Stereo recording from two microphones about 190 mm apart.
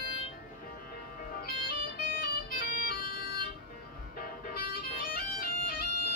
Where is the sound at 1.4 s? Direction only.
50° left (ahead or behind).